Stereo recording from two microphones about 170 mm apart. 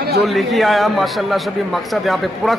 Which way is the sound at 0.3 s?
Centre (ahead or behind).